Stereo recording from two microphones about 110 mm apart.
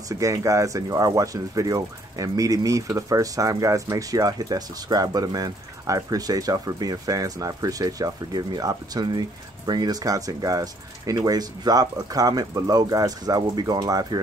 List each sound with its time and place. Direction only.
0.1 s speech: 30° right (ahead or behind)